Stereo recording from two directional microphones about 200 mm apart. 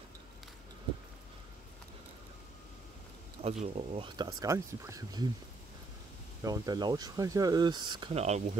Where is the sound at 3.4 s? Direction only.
30° right (ahead or behind); by 5.2 s 15° right (ahead or behind).